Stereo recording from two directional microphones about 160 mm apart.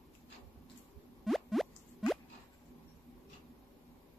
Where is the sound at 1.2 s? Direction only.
Centre (ahead or behind).